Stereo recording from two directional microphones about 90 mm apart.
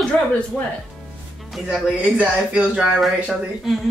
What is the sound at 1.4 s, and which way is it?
Speech, centre (ahead or behind).